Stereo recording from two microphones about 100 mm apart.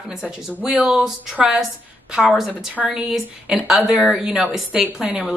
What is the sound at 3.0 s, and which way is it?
A woman's voice, centre (ahead or behind).